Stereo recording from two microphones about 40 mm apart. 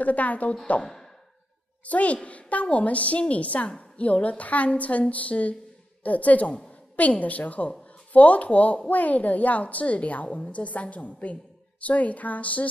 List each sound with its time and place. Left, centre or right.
0.0 s a woman's voice: left
1.9 s a woman's voice: left